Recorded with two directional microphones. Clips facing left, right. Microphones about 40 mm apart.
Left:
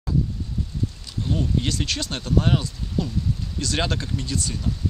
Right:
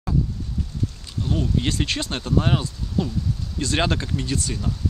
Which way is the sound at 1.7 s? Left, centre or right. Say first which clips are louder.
Right 2 dB; right.